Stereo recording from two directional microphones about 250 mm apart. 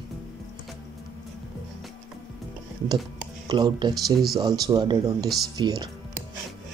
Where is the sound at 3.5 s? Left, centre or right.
Centre.